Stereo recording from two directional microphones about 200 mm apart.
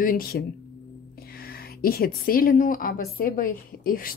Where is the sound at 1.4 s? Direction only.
50° left (ahead or behind).